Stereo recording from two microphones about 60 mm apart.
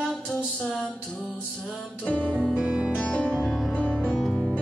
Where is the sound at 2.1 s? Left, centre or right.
Left.